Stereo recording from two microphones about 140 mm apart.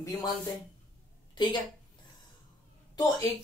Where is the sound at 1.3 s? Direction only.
30° left (ahead or behind).